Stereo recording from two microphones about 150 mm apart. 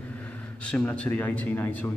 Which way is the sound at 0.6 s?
5° left (ahead or behind).